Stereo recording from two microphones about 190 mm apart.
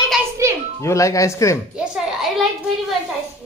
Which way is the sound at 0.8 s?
15° left (ahead or behind).